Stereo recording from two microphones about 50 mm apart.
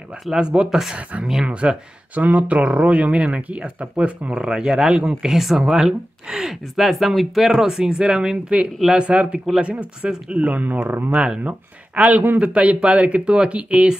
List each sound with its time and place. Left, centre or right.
0.3 s speech: centre
1.5 s speech: right
4.4 s speech: centre